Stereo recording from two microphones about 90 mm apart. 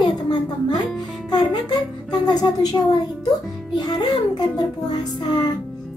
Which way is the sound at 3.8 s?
50° left (ahead or behind).